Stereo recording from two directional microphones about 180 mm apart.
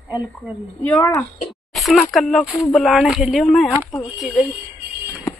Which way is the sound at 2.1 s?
Centre (ahead or behind).